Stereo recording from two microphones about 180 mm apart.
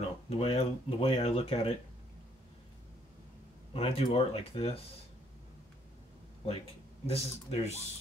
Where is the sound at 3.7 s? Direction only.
30° left (ahead or behind).